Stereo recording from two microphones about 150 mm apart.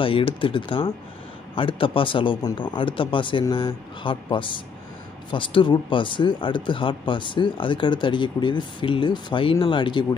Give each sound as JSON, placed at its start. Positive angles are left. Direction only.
{"t": 0.0, "sound": "speech", "side_deg": 35}